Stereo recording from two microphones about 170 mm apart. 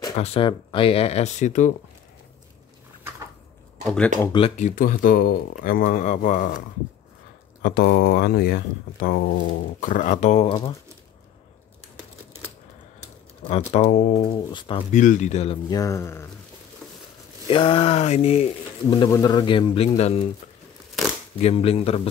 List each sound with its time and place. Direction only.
0.2 s speech: 35° left (ahead or behind)
3.8 s speech: 5° left (ahead or behind)
4.6 s speech: 50° left (ahead or behind)
7.6 s speech: 80° left
9.8 s speech: 50° left (ahead or behind); by 10.8 s 25° left (ahead or behind)
13.7 s speech: 45° left (ahead or behind)
14.9 s speech: 45° left (ahead or behind)
15.7 s speech: 20° left (ahead or behind)
17.5 s speech: 30° left (ahead or behind)
21.4 s speech: 35° left (ahead or behind)